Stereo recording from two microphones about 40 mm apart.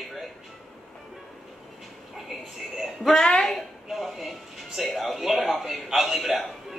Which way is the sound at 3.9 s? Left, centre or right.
Centre.